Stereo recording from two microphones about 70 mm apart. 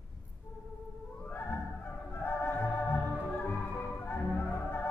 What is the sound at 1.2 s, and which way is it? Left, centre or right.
Opera, left.